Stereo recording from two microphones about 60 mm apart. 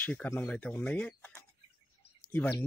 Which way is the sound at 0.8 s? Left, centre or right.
Centre.